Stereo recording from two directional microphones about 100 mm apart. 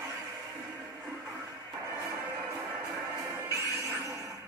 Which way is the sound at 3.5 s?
35° right (ahead or behind).